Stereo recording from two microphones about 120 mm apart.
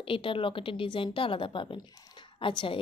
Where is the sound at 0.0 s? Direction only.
45° left (ahead or behind).